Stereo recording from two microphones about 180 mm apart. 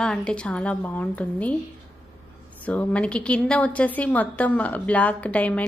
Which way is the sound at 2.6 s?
10° left (ahead or behind).